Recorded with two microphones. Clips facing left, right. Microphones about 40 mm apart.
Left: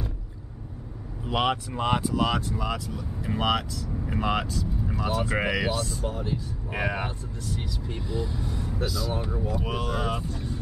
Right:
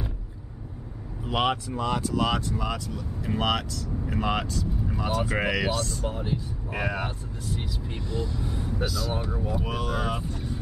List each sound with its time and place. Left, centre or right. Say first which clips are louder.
1.2 s speech: even; centre
6.0 s speech: even; centre
6.7 s vehicle: left 1 dB; centre
7.4 s speech: even; centre
8.1 s speech: even; centre
8.5 s speech: right 1 dB; centre
8.8 s speech: left 1 dB; centre